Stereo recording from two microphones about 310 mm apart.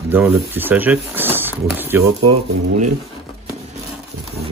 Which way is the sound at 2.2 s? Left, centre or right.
Centre.